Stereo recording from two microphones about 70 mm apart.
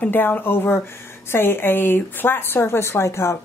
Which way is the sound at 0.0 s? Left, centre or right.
Left.